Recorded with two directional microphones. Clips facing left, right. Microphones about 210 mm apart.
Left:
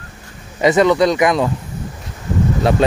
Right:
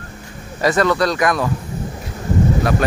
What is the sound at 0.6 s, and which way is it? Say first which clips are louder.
Speech: left 4 dB; 20° left (ahead or behind).